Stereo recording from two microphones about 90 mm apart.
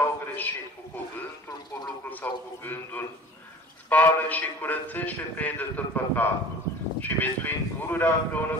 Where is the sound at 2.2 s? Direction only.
20° left (ahead or behind).